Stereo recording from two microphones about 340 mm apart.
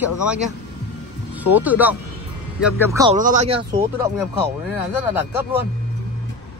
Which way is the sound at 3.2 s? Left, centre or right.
Right.